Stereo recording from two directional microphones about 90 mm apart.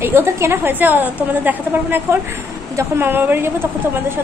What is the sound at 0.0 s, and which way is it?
A woman's voice, 25° right (ahead or behind).